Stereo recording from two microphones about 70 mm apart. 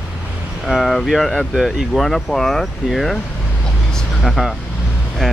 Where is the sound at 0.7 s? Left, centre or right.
Centre.